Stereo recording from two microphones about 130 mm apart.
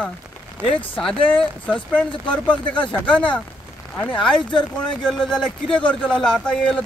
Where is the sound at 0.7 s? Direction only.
10° left (ahead or behind).